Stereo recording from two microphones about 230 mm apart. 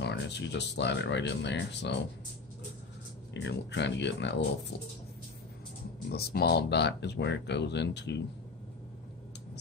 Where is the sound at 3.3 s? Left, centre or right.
Left.